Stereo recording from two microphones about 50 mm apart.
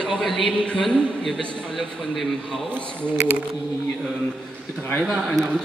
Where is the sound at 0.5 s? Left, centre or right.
Left.